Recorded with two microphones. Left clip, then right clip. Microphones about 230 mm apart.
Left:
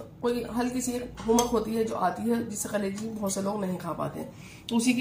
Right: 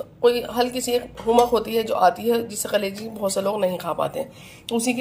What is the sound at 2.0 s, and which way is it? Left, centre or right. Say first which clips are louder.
Speech: right 9 dB; right.